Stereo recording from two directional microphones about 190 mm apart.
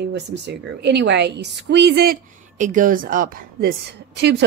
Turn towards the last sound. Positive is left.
turn(degrees=-60)  # may be behind; listen again after turning